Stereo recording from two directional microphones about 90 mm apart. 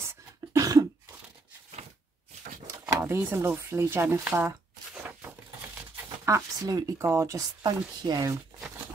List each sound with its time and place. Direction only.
0.0 s cough: 30° right (ahead or behind)
2.9 s speech: 30° right (ahead or behind)
6.2 s speech: 35° right (ahead or behind)